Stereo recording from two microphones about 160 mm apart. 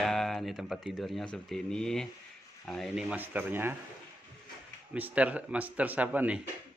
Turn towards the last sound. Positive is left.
turn(degrees=-10)  # may be behind; listen again after turning